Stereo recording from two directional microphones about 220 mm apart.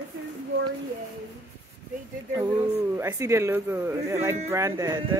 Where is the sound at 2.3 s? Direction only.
10° right (ahead or behind).